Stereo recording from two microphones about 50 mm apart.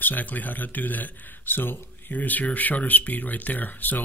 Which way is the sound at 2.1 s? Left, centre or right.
Left.